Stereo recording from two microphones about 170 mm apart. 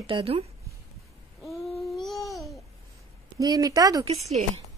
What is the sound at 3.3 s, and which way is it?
Speech, 20° right (ahead or behind).